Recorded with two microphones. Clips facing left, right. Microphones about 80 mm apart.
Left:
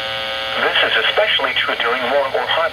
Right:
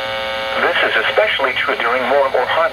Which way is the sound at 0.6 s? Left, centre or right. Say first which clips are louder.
Right 1 dB; right.